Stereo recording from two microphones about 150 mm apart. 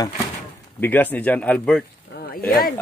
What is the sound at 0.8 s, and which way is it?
Speech, 10° left (ahead or behind).